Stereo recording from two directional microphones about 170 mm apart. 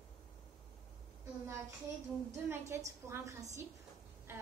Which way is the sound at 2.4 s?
15° right (ahead or behind).